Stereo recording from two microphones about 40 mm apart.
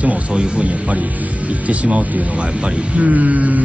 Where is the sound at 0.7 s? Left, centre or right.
Right.